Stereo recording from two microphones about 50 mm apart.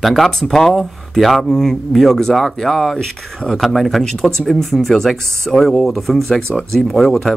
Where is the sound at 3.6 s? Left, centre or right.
Centre.